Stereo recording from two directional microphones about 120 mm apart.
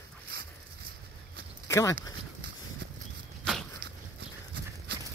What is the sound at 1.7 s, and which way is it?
Speech, 25° left (ahead or behind).